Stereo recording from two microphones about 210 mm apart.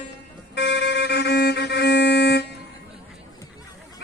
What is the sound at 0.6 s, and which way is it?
Music, 55° left (ahead or behind).